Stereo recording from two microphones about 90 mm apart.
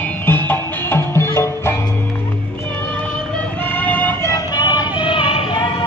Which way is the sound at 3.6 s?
20° left (ahead or behind).